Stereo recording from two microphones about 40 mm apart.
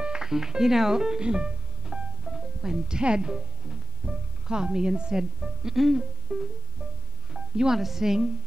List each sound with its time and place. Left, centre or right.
0.0 s music: centre
3.0 s speech: right
5.4 s speech: centre
6.3 s speech: right
7.3 s music: centre
7.7 s a woman's voice: centre